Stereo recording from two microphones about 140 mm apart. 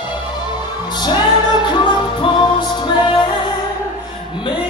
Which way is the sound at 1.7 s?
30° left (ahead or behind).